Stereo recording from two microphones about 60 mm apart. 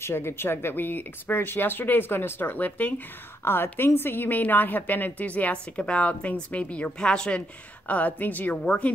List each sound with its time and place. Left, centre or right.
0.0 s a woman's voice: left